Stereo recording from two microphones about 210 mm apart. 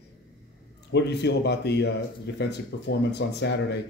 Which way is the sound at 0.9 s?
55° left (ahead or behind).